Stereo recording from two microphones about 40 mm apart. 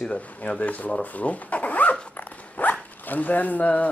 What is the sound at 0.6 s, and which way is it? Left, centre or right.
Speech, left.